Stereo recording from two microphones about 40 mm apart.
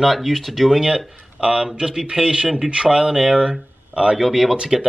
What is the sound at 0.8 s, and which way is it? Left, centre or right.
Speech, right.